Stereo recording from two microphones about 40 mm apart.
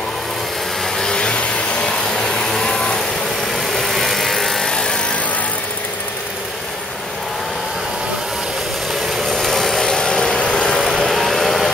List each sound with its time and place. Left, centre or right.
0.9 s a sound: centre
1.9 s vacuum cleaner: centre
3.5 s vehicle: centre
9.2 s vehicle: centre
10.4 s vehicle: left
11.1 s vehicle: centre